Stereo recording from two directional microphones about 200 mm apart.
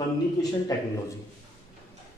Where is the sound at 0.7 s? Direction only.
15° left (ahead or behind).